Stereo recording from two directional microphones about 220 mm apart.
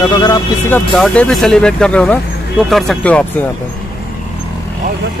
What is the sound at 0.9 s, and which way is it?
Speech, 5° left (ahead or behind).